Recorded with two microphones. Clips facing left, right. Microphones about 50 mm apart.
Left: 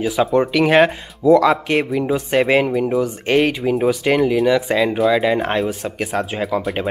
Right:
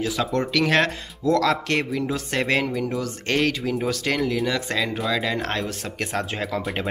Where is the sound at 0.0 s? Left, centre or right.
Centre.